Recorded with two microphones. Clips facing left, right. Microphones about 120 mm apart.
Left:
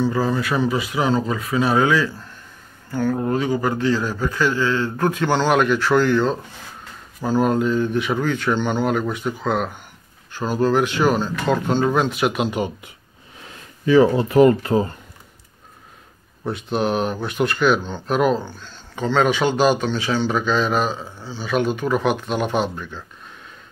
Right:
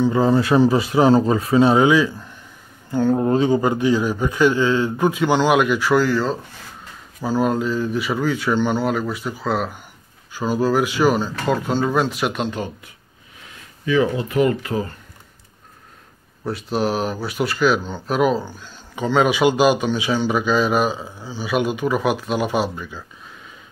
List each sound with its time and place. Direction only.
0.0 s speech: 25° right (ahead or behind); by 12.4 s centre (ahead or behind)
12.4 s speech: 15° left (ahead or behind)
13.8 s speech: 35° left (ahead or behind)
16.4 s speech: centre (ahead or behind)